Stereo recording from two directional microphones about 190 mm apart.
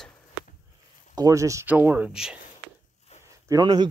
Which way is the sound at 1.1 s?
15° right (ahead or behind).